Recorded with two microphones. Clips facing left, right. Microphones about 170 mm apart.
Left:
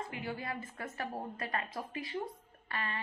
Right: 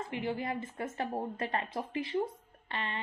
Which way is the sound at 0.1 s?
25° right (ahead or behind).